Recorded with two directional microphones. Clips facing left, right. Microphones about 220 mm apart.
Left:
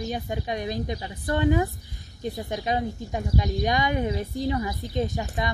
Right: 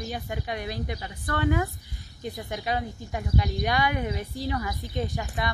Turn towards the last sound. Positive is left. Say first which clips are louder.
# left 2 dB
turn(degrees=15)  # may be behind; listen again after turning